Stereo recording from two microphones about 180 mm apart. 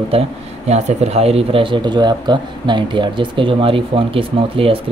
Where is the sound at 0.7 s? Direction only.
35° right (ahead or behind).